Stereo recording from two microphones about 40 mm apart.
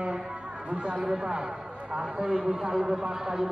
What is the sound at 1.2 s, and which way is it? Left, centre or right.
A man's voice, right.